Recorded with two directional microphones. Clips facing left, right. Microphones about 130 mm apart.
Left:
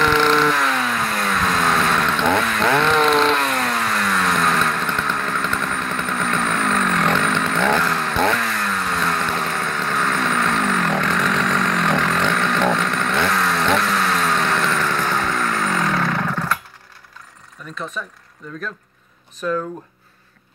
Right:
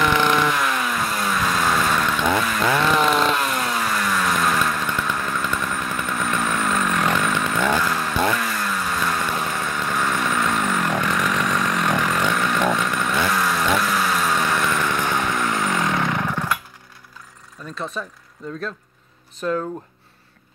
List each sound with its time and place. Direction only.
0.0 s vehicle: 10° right (ahead or behind)
17.7 s speech: 35° right (ahead or behind)